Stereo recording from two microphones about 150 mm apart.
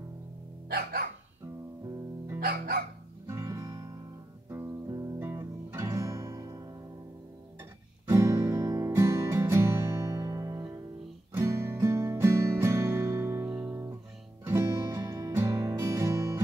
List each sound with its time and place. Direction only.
0.7 s music: 90° right
2.4 s music: 80° right
3.3 s guitar: 20° right (ahead or behind)
4.5 s music: 15° right (ahead or behind)
8.1 s music: 20° right (ahead or behind)
14.4 s music: 15° right (ahead or behind)